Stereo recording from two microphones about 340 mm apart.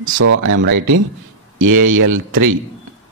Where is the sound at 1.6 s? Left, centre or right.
Right.